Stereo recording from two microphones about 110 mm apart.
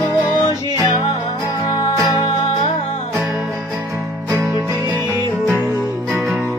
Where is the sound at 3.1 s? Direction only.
25° right (ahead or behind).